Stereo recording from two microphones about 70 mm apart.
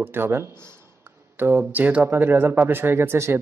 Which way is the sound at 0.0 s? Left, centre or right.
Right.